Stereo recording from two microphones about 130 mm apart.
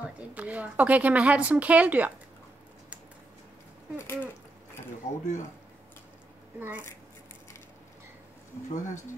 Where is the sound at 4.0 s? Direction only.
15° left (ahead or behind).